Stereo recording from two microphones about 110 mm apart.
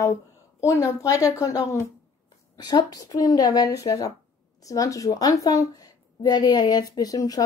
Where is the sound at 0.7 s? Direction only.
30° left (ahead or behind).